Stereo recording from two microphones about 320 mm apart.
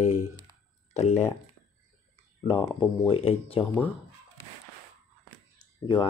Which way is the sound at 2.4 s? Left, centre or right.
Centre.